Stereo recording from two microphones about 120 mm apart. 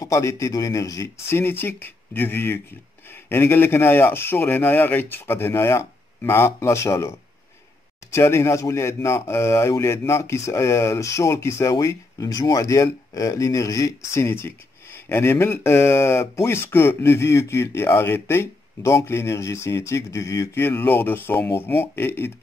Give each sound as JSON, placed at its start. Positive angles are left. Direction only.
{"t": 0.0, "sound": "speech", "side_deg": 30}